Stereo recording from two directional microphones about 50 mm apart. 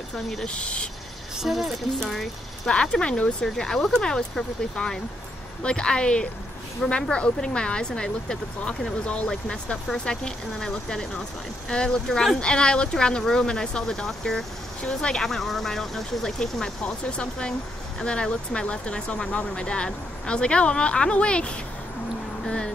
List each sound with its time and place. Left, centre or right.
0.5 s speech: left
1.4 s speech: centre
2.7 s speech: centre
3.4 s speech: centre
9.3 s speech: centre